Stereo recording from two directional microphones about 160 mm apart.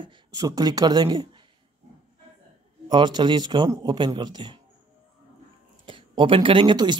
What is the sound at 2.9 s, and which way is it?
A man's voice, 30° right (ahead or behind).